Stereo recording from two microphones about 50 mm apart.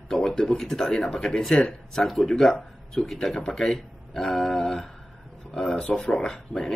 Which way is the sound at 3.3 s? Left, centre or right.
Centre.